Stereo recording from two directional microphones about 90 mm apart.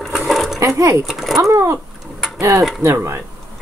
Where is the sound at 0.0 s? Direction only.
Centre (ahead or behind).